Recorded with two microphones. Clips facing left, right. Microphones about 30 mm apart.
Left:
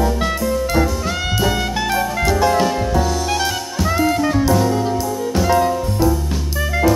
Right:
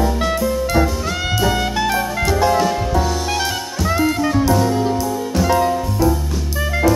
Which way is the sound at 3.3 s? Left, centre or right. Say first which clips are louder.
Left 1 dB; centre.